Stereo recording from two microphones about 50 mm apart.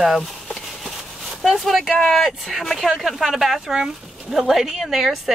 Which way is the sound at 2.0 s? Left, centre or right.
Centre.